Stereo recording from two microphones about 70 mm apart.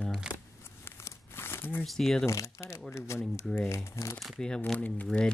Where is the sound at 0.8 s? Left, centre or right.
Left.